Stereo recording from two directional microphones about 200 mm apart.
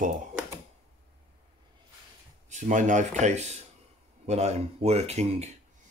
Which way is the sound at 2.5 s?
40° right (ahead or behind).